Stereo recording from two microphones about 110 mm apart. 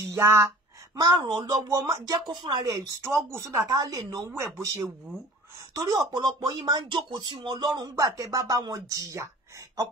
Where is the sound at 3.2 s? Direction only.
25° right (ahead or behind).